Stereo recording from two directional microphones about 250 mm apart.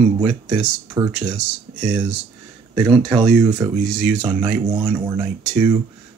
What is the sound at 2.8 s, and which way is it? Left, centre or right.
Speech, centre.